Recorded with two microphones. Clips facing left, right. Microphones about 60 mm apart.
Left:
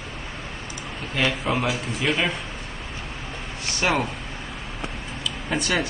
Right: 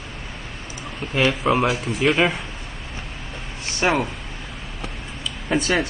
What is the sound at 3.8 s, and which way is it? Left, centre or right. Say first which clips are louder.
Speech: right 3 dB; centre.